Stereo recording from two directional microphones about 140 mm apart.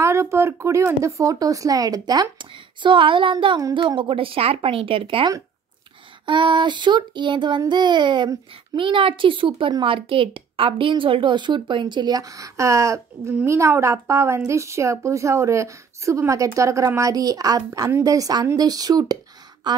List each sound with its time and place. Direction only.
0.0 s a woman's voice: 20° right (ahead or behind)